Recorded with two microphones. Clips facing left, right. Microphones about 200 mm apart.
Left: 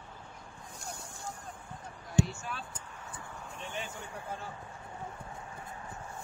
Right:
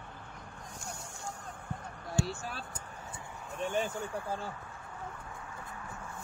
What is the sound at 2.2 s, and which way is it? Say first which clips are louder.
Basketball bounce: left 4 dB; 20° left (ahead or behind).